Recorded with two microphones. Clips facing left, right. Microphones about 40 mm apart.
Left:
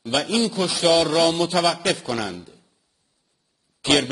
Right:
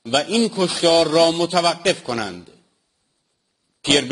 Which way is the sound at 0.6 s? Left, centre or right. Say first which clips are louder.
Right 2 dB; centre.